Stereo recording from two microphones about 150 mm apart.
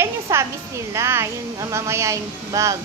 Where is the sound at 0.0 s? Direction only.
15° right (ahead or behind).